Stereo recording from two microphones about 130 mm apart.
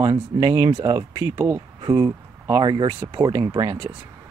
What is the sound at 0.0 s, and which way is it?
Speech, 35° right (ahead or behind).